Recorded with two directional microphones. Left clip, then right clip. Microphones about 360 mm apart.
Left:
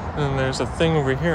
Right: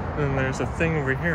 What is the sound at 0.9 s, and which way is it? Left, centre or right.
Speech, centre.